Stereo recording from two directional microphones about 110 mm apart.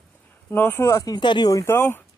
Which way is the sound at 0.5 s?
20° left (ahead or behind).